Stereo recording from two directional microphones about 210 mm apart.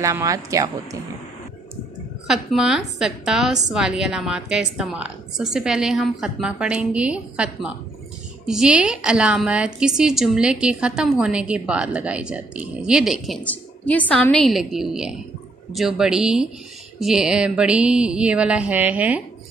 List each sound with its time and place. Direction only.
0.0 s speech: 15° right (ahead or behind)
2.2 s a woman's voice: centre (ahead or behind)